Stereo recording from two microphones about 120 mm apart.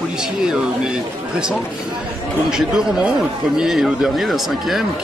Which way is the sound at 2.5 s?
5° right (ahead or behind).